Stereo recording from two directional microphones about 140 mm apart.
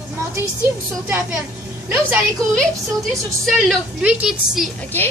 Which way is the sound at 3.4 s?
5° right (ahead or behind).